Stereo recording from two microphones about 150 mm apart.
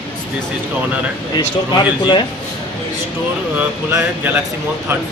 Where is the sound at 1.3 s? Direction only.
30° left (ahead or behind).